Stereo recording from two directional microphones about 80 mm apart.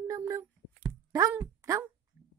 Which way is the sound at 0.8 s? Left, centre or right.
Right.